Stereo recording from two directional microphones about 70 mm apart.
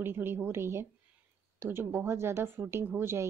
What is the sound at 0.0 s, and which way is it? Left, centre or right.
A woman's voice, right.